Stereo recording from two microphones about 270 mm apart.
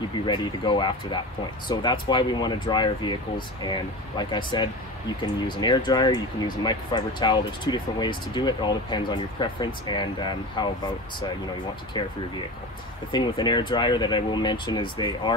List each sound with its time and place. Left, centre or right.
0.3 s speech: centre
13.1 s speech: centre